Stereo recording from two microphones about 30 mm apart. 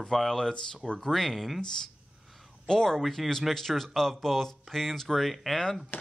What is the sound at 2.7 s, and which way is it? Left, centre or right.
Speech, centre.